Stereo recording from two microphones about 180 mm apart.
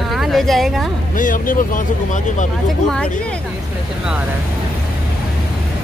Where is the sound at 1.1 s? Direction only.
50° left (ahead or behind).